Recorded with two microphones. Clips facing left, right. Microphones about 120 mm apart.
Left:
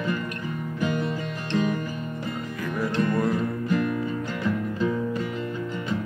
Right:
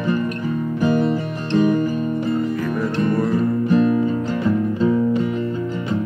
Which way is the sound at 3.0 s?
25° right (ahead or behind).